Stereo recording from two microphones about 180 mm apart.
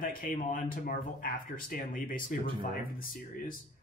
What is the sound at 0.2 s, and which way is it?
Speech, 50° left (ahead or behind).